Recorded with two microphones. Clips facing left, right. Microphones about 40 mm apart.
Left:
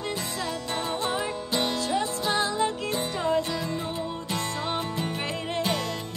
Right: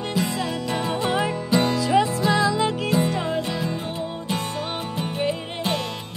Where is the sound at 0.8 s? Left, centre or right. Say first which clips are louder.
Right 6 dB; right.